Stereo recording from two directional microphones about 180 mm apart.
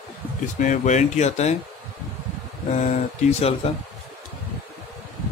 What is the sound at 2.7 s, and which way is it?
Speech, 40° left (ahead or behind).